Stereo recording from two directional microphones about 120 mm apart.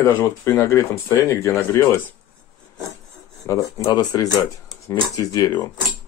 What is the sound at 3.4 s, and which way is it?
Speech, 25° left (ahead or behind).